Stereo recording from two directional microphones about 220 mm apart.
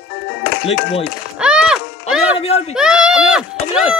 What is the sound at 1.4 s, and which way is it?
Music, 5° right (ahead or behind).